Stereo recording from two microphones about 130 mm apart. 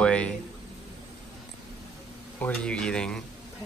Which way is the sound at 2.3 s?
10° left (ahead or behind).